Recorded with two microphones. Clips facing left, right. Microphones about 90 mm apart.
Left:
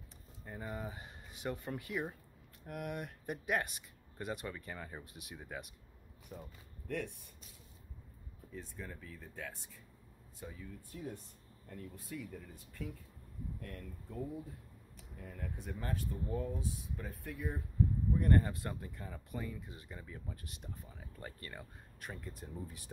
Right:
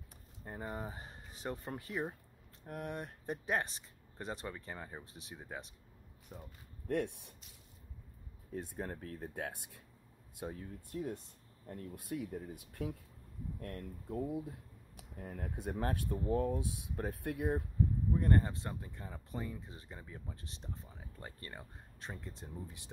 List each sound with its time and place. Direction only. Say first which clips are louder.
0.5 s speech: right 1 dB; 30° right (ahead or behind)
6.9 s speech: right 5 dB; 55° right (ahead or behind)
8.5 s speech: right 6 dB; 55° right (ahead or behind)
12.0 s speech: right 7 dB; 60° right (ahead or behind)
13.6 s speech: right 3 dB; 45° right (ahead or behind)
15.1 s speech: right 3 dB; 45° right (ahead or behind)
15.6 s speech: right 5 dB; 70° right (ahead or behind)
18.1 s speech: left 1 dB; 25° right (ahead or behind)
20.9 s speech: left 1 dB; 20° right (ahead or behind)